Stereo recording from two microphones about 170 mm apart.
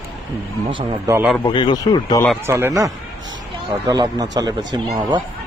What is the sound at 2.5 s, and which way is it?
Speech, 15° right (ahead or behind).